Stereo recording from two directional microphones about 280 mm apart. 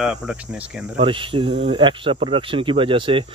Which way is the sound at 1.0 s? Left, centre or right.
Centre.